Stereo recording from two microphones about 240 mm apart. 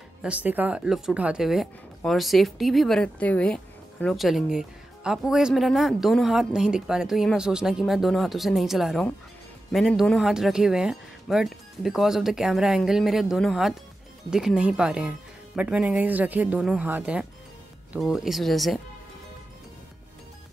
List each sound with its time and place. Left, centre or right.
0.2 s speech: centre